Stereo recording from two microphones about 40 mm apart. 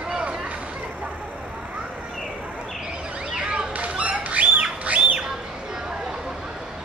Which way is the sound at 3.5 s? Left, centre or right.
Right.